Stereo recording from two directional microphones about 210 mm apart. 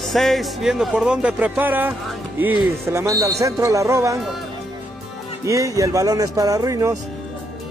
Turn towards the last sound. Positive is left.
turn(degrees=-15)  # may be behind; listen again after turning